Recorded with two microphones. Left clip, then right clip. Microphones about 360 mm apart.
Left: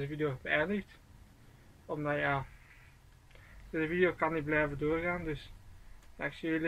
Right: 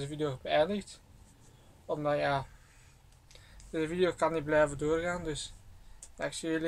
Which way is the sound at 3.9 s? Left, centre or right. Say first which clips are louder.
Right 1 dB; centre.